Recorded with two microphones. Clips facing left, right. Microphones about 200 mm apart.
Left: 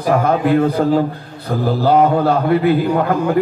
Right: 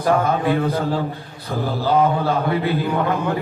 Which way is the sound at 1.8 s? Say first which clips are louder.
Left 5 dB; 50° left (ahead or behind).